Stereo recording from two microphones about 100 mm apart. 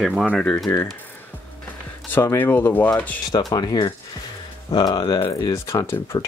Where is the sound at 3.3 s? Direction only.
45° left (ahead or behind).